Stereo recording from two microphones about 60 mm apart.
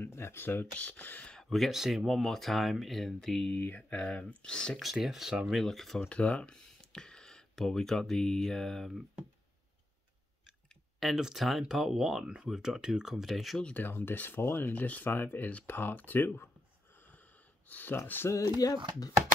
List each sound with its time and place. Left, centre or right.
0.0 s speech: left
1.2 s a sound: centre
1.5 s speech: centre
3.5 s speech: left
4.0 s speech: centre
4.7 s speech: centre
5.9 s speech: centre
11.1 s speech: centre
13.7 s speech: left
17.6 s speech: left
18.6 s speech: left